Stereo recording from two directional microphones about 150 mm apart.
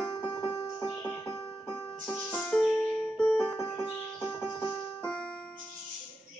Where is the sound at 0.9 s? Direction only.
10° left (ahead or behind).